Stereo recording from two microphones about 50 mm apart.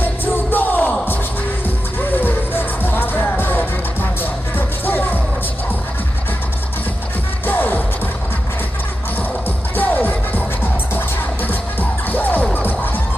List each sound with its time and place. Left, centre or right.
0.0 s music: left
2.0 s music: left
7.4 s music: left
9.8 s music: left